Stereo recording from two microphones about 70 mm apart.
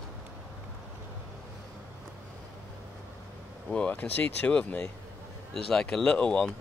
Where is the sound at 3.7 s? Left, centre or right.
Centre.